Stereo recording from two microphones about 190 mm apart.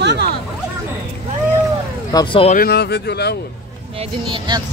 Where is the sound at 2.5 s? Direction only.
55° left (ahead or behind).